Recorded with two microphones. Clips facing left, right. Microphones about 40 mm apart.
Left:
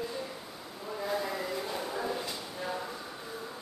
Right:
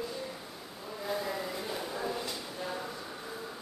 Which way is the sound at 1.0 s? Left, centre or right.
Centre.